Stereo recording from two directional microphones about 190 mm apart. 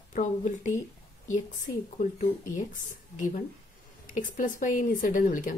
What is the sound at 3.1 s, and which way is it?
Speech, 45° left (ahead or behind).